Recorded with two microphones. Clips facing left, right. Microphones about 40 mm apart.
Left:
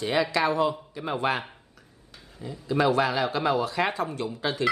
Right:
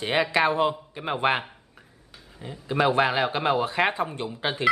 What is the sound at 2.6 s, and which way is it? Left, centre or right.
Speech, right.